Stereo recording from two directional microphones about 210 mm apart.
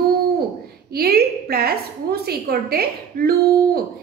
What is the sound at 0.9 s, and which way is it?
A woman's voice, 45° right (ahead or behind).